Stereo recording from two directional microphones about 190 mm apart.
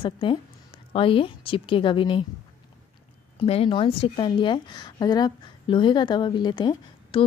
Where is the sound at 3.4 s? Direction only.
30° left (ahead or behind).